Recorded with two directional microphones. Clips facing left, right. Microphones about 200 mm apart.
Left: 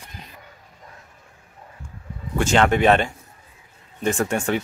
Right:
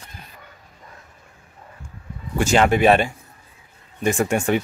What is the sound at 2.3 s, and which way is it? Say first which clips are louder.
Speech: right 1 dB; 10° right (ahead or behind).